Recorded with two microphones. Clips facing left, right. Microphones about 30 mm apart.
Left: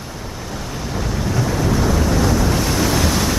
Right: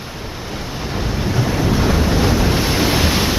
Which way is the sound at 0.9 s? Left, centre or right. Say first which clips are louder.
Right 1 dB; right.